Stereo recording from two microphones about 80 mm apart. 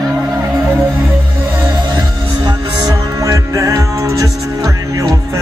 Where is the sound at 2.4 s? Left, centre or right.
Right.